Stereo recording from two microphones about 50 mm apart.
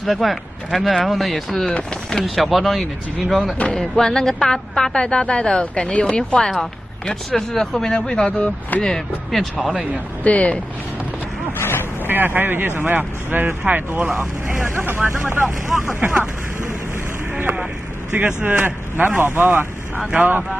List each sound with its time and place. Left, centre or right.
0.0 s speech: centre
1.7 s speech: centre
3.7 s a woman's voice: centre
8.3 s speech: left
8.8 s speech: centre
10.2 s speech: left
11.5 s speech: left
12.1 s speech: right
14.8 s speech: right
16.0 s speech: right
18.1 s speech: right